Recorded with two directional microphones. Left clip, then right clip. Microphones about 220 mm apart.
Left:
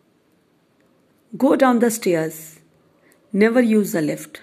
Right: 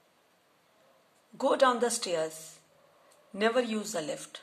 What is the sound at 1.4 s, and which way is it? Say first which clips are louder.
Speech: left 9 dB; 35° left (ahead or behind).